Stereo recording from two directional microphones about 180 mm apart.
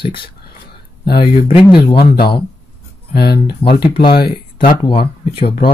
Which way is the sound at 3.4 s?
25° left (ahead or behind).